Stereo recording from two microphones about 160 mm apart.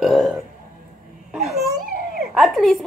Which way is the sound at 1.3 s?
Centre (ahead or behind).